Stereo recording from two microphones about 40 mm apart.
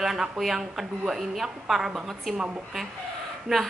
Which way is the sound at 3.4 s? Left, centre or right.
Centre.